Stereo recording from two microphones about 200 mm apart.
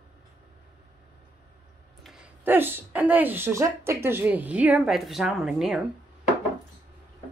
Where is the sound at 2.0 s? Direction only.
5° right (ahead or behind).